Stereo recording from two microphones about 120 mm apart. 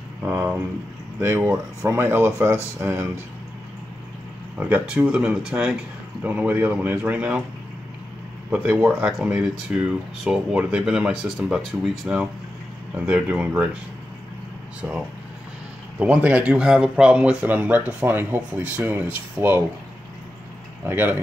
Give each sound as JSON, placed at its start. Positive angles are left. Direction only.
{"t": 0.2, "sound": "speech", "side_deg": -10}
{"t": 4.6, "sound": "speech", "side_deg": -15}
{"t": 8.5, "sound": "speech", "side_deg": -10}
{"t": 14.8, "sound": "speech", "side_deg": -10}
{"t": 19.4, "sound": "speech", "side_deg": -25}
{"t": 20.8, "sound": "speech", "side_deg": -15}